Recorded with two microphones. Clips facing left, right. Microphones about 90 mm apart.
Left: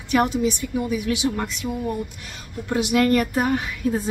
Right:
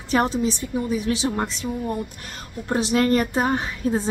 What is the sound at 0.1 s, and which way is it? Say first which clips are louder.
A woman's voice: left 1 dB; 35° right (ahead or behind).